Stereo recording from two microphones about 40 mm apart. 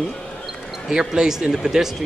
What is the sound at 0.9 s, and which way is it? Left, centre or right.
Speech, centre.